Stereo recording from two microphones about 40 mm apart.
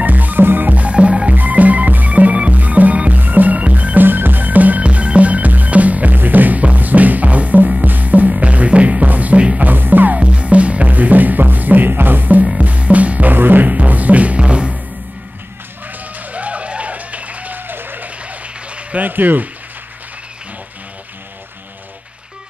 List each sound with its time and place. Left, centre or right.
0.0 s music: right
0.4 s music: right
0.7 s music: right
1.3 s music: right
4.8 s music: right
10.1 s music: right
12.5 s music: right
13.3 s music: right
13.7 s music: right
16.2 s run: right
17.6 s applause: right
18.0 s applause: right
19.0 s speech: right